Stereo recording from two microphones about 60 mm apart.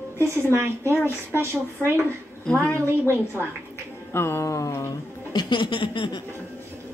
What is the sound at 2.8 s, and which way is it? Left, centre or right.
Speech, right.